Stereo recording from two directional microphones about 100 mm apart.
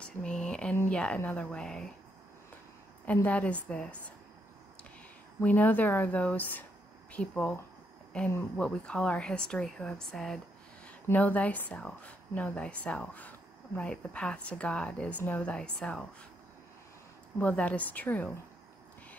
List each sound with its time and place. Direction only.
0.0 s a woman's voice: 10° left (ahead or behind)
3.3 s a woman's voice: 15° left (ahead or behind)
5.4 s a woman's voice: 15° left (ahead or behind)
11.1 s a woman's voice: 15° left (ahead or behind)
17.4 s a woman's voice: 15° left (ahead or behind)